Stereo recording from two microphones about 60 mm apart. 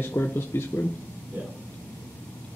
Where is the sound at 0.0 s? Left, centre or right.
Left.